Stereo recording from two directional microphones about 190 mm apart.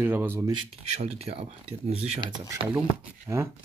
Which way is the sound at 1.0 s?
35° right (ahead or behind).